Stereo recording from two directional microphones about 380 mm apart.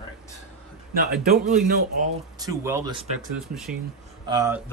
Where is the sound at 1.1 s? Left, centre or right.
Right.